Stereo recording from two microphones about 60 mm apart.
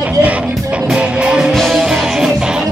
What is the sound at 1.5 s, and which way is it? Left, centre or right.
Music, centre.